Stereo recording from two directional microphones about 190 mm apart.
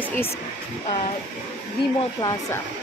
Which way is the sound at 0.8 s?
30° left (ahead or behind).